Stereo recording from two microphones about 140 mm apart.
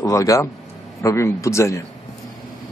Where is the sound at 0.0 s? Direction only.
25° left (ahead or behind).